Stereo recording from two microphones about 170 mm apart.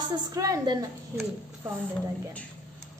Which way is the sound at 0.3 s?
20° right (ahead or behind).